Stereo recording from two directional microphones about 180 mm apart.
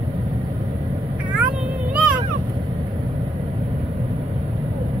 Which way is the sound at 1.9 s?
10° right (ahead or behind).